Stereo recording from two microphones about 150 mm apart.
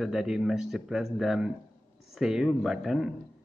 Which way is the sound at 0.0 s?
Centre (ahead or behind).